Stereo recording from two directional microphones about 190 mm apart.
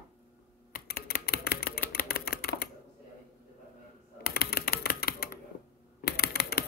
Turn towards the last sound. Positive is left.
turn(degrees=55)  # may be behind; listen again after turning